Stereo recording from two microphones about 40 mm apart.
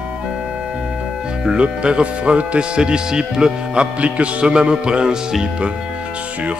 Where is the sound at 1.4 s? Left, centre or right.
Right.